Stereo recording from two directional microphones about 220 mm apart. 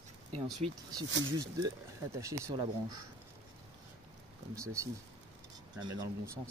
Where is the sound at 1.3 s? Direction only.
15° right (ahead or behind).